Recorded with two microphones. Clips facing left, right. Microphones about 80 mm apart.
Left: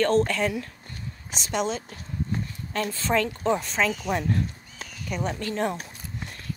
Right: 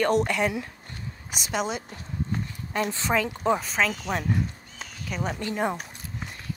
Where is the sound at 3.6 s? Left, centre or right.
Centre.